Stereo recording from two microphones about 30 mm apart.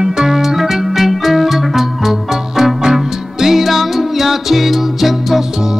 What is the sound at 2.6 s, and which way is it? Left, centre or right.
Music, centre.